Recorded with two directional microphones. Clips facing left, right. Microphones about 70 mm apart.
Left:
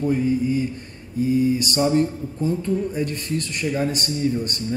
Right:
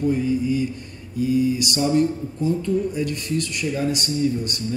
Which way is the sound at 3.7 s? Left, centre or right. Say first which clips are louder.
Left 1 dB; left.